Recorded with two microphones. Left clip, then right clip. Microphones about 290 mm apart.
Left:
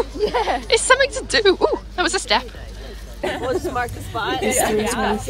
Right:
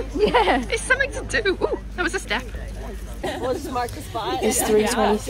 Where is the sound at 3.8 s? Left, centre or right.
Right.